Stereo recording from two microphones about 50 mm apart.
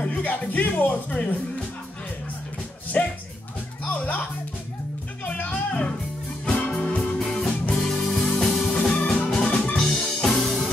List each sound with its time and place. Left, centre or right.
0.0 s speech: left
2.9 s a child's voice: left
5.2 s music: left
7.0 s music: centre